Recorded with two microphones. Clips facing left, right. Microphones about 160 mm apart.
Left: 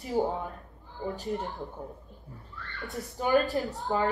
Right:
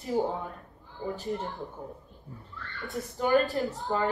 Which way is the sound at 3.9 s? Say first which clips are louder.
Left 1 dB; 10° left (ahead or behind).